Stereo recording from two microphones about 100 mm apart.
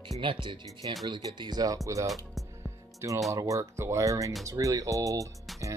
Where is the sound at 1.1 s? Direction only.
45° right (ahead or behind).